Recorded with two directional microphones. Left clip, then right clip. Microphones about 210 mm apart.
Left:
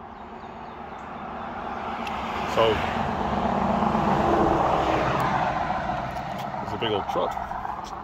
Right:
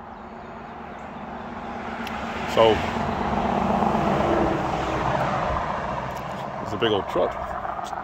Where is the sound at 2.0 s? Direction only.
10° left (ahead or behind).